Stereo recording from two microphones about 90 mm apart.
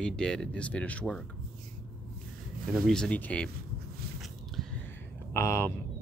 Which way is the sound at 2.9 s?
10° left (ahead or behind).